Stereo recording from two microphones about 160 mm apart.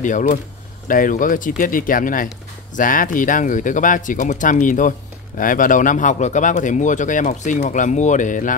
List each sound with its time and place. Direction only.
0.0 s speech: 55° left (ahead or behind)